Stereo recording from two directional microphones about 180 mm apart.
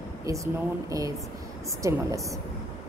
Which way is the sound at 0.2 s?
15° right (ahead or behind).